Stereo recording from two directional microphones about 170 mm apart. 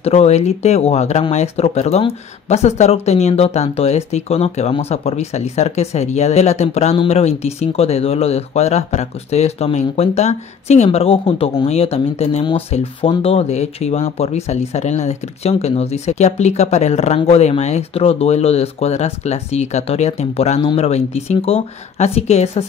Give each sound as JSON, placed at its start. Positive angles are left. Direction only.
{"t": 0.0, "sound": "speech", "side_deg": 40}